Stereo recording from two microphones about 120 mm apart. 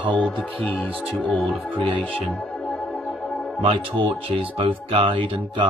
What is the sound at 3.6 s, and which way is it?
Speech, 50° right (ahead or behind).